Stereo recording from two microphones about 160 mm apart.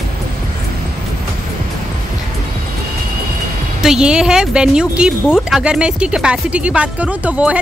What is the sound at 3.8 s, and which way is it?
Speech, 5° right (ahead or behind).